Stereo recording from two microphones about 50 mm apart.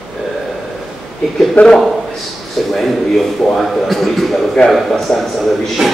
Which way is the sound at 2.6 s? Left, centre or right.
Centre.